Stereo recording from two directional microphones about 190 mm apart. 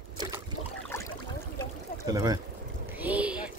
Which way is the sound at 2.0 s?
20° right (ahead or behind).